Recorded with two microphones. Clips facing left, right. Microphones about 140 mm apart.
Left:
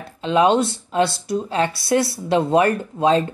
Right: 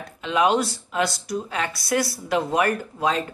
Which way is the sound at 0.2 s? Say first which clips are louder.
Left 4 dB; 25° left (ahead or behind).